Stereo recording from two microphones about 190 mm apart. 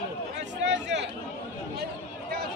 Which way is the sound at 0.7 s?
65° right (ahead or behind).